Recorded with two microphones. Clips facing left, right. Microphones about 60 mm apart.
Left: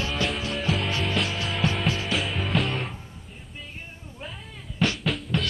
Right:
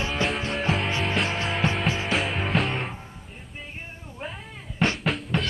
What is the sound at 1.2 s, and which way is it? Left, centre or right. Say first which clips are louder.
Music: right 2 dB; right.